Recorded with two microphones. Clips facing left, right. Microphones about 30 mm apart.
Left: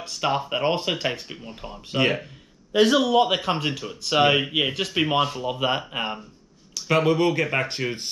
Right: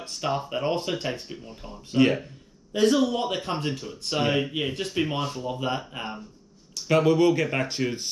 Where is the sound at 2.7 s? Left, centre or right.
Left.